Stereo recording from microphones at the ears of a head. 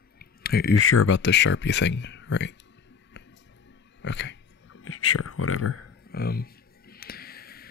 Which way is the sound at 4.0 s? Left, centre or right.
Left.